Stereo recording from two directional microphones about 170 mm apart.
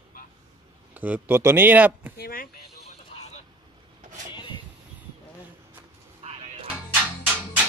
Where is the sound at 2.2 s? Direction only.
65° left (ahead or behind).